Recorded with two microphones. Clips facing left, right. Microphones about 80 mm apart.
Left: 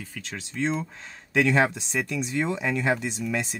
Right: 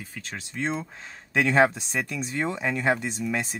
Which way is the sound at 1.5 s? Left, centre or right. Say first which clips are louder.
Right 2 dB; right.